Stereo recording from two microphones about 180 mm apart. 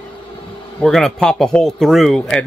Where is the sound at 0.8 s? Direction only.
5° left (ahead or behind).